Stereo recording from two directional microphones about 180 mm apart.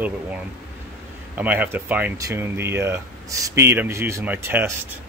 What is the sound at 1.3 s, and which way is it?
Speech, 10° right (ahead or behind).